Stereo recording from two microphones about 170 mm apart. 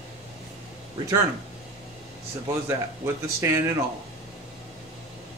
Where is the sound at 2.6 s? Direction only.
15° right (ahead or behind).